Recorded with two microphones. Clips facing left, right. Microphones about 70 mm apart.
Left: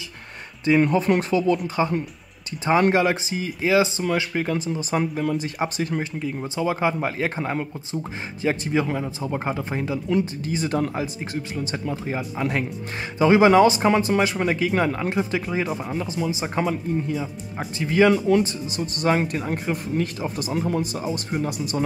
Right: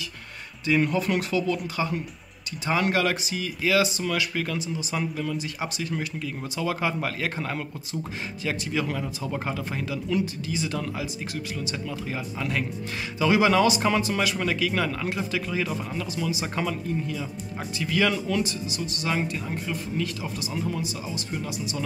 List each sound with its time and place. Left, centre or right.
0.7 s speech: left
2.6 s a man's voice: left
4.7 s speech: left
5.9 s a man's voice: left